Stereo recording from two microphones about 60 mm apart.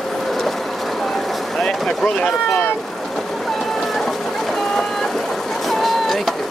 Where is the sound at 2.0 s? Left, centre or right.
Centre.